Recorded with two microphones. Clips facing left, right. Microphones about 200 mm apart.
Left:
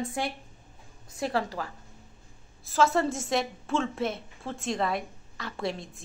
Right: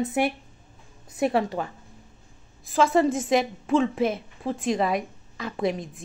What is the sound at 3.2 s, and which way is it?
Speech, 5° right (ahead or behind).